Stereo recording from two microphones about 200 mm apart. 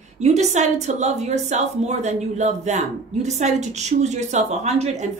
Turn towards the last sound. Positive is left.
turn(degrees=-35)  # may be behind; listen again after turning